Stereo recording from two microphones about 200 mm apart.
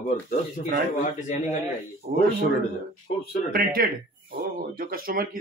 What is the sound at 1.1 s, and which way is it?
Speech, 40° left (ahead or behind).